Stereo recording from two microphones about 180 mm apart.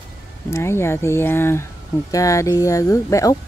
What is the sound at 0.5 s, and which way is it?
Speech, 15° left (ahead or behind).